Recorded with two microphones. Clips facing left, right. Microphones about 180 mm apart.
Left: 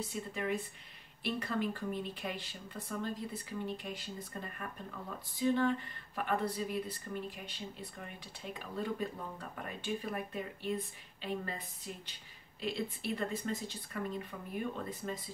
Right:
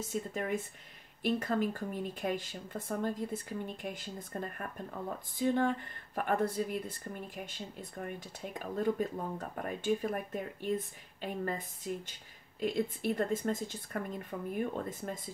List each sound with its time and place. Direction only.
0.0 s speech: 45° right (ahead or behind)